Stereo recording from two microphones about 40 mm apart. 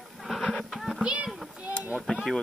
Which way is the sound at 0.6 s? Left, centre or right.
Centre.